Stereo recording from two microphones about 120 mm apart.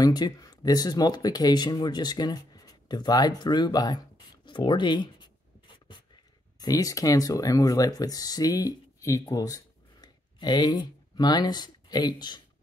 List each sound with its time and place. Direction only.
0.0 s speech: 35° left (ahead or behind)
4.5 s writing: 40° left (ahead or behind)
6.6 s speech: 30° left (ahead or behind)